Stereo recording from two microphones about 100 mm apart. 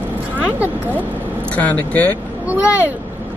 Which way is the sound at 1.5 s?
15° left (ahead or behind).